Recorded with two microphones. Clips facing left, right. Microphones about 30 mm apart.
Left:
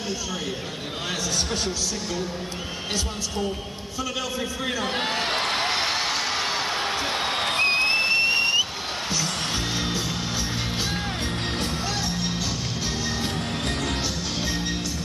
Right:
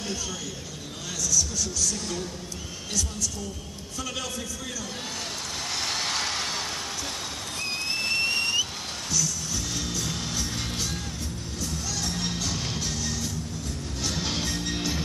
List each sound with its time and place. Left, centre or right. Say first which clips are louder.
1.3 s speech: right 2 dB; left
2.9 s a woman's voice: left 1 dB; left
4.4 s a sound: left 8 dB; left
8.1 s a sound: left 5 dB; left
9.1 s music: left 2 dB; left
10.0 s music: left 3 dB; left
12.0 s music: left 3 dB; centre
14.4 s music: left 3 dB; centre